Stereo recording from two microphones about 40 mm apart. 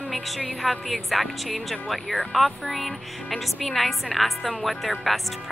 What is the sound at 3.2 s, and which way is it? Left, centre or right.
Speech, centre.